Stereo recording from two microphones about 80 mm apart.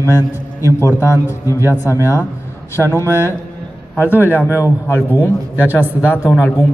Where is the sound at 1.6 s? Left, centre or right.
Right.